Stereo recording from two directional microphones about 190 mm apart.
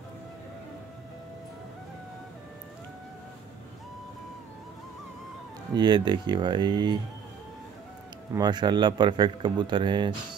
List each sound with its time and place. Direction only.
5.8 s speech: 20° right (ahead or behind)
8.3 s speech: 20° right (ahead or behind)